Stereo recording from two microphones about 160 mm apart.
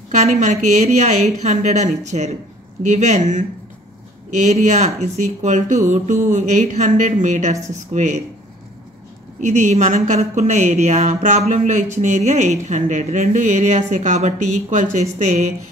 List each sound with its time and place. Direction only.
0.1 s speech: 45° right (ahead or behind)
9.4 s speech: 45° right (ahead or behind)